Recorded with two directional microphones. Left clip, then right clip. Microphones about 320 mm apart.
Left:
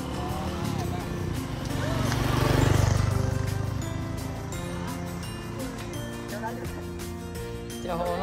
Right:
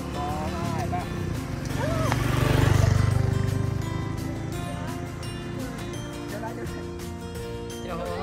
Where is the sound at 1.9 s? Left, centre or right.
Centre.